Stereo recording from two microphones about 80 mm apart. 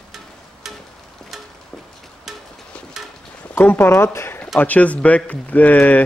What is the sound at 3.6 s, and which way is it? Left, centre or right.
Speech, left.